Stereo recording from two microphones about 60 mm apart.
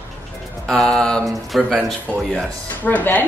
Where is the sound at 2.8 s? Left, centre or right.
Left.